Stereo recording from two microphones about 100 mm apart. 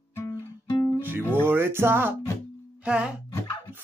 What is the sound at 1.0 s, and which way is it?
Music, 20° right (ahead or behind).